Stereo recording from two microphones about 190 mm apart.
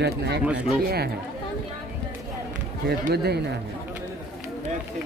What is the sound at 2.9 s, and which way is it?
Speech, 55° right (ahead or behind).